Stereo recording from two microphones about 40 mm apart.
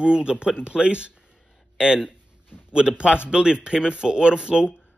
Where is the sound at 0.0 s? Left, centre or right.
Right.